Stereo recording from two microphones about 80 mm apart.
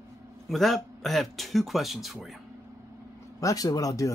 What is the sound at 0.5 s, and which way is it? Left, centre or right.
Speech, centre.